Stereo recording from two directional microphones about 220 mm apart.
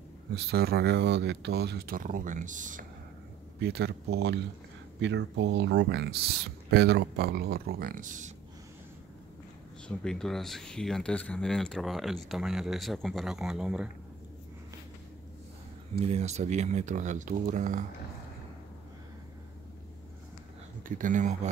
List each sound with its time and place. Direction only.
0.5 s speech: 45° right (ahead or behind)
3.5 s speech: 45° right (ahead or behind)
9.8 s speech: 5° left (ahead or behind)
16.0 s speech: 30° right (ahead or behind)
20.8 s speech: 35° right (ahead or behind)